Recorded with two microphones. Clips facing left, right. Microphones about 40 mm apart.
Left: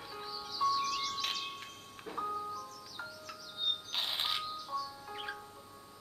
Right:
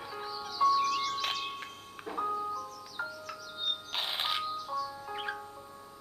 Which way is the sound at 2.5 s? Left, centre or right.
Centre.